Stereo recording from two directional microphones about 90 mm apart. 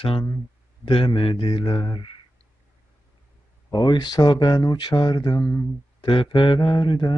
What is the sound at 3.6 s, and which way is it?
Speech, 50° left (ahead or behind).